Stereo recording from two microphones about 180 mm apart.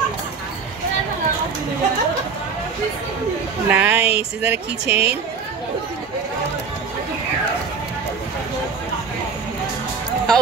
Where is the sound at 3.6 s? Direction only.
10° right (ahead or behind).